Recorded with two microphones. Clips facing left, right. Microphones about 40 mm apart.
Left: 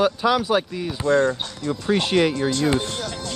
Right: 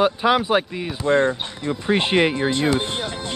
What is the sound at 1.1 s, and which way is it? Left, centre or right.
Speech, right.